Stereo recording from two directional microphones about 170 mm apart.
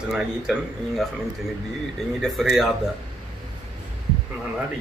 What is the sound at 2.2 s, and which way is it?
Speech, centre (ahead or behind).